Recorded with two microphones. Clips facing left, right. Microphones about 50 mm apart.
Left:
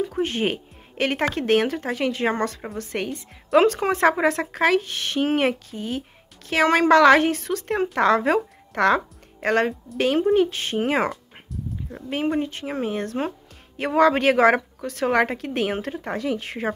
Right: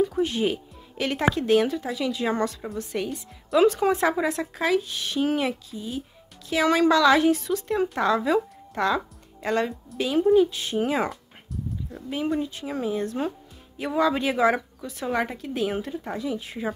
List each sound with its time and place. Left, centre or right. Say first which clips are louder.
0.2 s music: even; left
1.3 s speech: left 1 dB; left
12.1 s a woman's voice: left 3 dB; left